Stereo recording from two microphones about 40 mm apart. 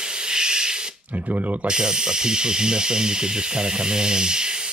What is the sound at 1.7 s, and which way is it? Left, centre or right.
Hiss, centre.